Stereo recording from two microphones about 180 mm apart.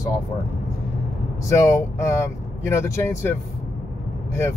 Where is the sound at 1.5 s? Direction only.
15° left (ahead or behind).